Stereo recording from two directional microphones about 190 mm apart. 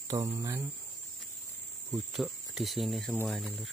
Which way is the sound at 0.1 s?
20° right (ahead or behind).